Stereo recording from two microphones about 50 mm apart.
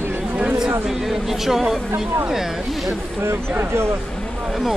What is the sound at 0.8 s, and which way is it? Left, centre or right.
Speech, centre.